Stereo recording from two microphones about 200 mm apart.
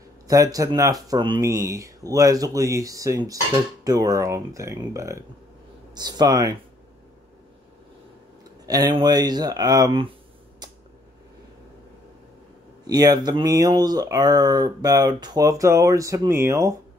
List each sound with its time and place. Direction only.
0.3 s speech: 15° right (ahead or behind)
8.6 s speech: 20° right (ahead or behind)
12.8 s speech: 20° right (ahead or behind)